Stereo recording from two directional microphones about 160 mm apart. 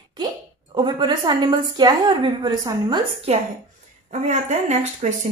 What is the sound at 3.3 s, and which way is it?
A woman's voice, 40° right (ahead or behind).